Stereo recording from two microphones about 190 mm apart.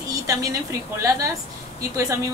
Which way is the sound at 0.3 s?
15° right (ahead or behind).